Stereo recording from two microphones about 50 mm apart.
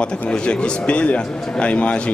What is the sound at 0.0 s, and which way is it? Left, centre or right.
A man's voice, left.